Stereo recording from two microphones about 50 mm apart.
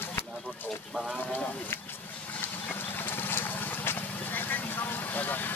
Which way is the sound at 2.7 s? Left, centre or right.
Left.